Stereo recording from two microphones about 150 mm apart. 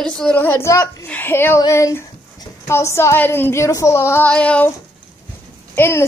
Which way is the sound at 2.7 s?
20° left (ahead or behind).